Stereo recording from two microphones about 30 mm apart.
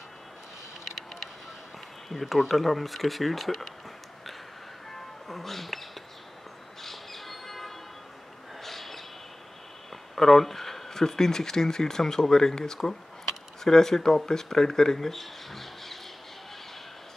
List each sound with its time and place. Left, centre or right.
0.8 s vehicle: centre
2.0 s speech: centre
5.3 s music: centre
6.8 s squawk: centre
8.6 s bird: centre
10.1 s speech: centre